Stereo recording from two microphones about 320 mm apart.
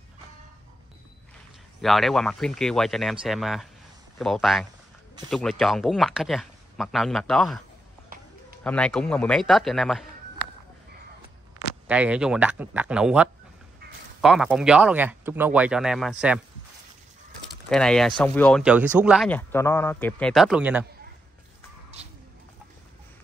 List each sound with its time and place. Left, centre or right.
1.8 s speech: centre
8.1 s a sound: right
8.6 s speech: centre
11.9 s speech: centre
17.6 s speech: centre